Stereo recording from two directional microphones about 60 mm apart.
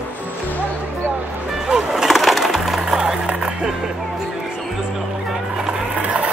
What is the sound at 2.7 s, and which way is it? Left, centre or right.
Music, centre.